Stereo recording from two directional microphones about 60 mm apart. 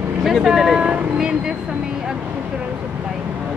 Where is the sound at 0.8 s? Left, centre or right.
Centre.